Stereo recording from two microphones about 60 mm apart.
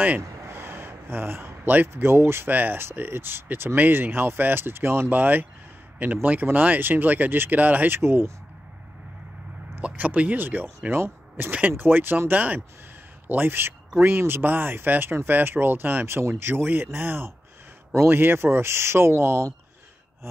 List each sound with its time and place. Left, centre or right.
0.4 s a sound: right
2.5 s speech: right
5.1 s speech: right
9.8 s a man's voice: right